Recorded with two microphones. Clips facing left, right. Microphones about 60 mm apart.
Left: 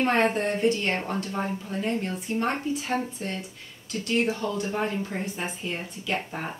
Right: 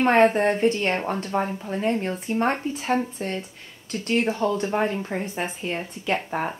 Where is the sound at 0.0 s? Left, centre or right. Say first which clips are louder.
Right 6 dB; right.